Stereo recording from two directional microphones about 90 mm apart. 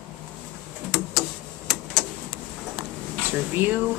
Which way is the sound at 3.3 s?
20° right (ahead or behind).